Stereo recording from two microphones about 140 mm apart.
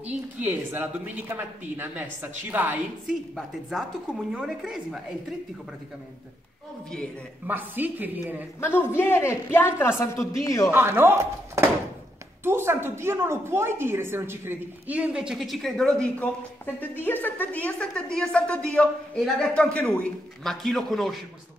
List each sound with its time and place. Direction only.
0.4 s a woman's voice: 15° right (ahead or behind)
4.3 s a woman's voice: 5° right (ahead or behind)
7.4 s a woman's voice: 15° right (ahead or behind)
8.5 s a woman's voice: 15° left (ahead or behind)
10.7 s a woman's voice: 15° right (ahead or behind); by 21.2 s centre (ahead or behind)